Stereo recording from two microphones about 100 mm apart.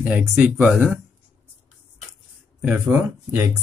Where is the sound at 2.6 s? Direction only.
10° right (ahead or behind).